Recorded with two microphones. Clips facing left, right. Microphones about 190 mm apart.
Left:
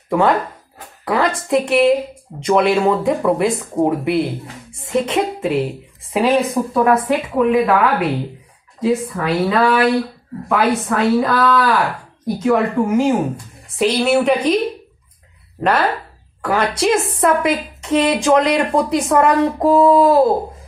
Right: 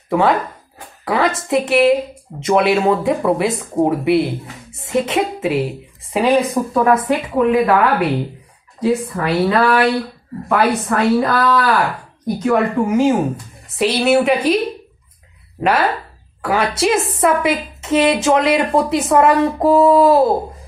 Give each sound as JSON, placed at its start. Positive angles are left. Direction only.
{"t": 0.1, "sound": "a woman's voice", "side_deg": 0}
{"t": 15.6, "sound": "a woman's voice", "side_deg": -10}